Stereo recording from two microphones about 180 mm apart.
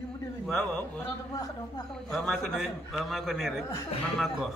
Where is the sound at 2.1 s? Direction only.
Centre (ahead or behind).